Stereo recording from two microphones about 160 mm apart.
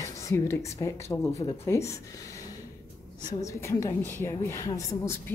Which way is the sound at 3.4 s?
20° left (ahead or behind).